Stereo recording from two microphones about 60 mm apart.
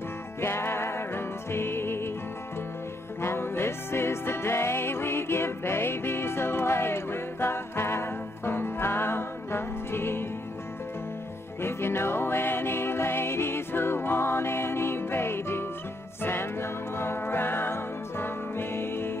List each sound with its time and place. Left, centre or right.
0.4 s music: left
3.2 s music: left
11.6 s music: left